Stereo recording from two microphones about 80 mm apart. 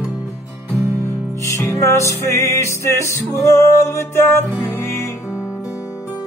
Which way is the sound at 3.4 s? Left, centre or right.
Left.